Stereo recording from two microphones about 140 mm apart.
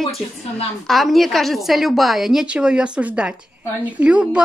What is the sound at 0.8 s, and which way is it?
Speech, centre (ahead or behind).